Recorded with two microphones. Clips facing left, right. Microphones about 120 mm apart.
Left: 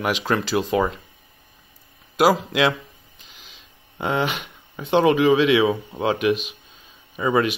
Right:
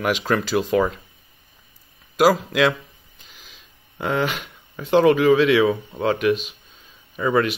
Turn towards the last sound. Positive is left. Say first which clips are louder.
# even
turn(degrees=10)  # may be behind; listen again after turning